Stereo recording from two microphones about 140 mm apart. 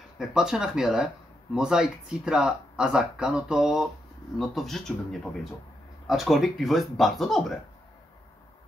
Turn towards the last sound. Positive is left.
turn(degrees=0)  # may be behind; listen again after turning